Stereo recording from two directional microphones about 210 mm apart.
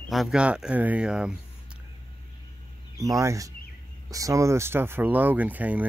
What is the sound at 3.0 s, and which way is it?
Speech, 15° right (ahead or behind).